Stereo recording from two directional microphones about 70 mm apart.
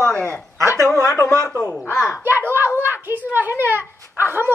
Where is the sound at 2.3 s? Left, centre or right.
Right.